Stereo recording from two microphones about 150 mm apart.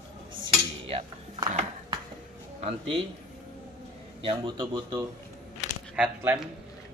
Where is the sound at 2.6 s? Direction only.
40° right (ahead or behind).